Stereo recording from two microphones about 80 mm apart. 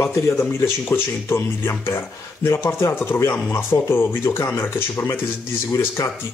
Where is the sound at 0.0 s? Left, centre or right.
Left.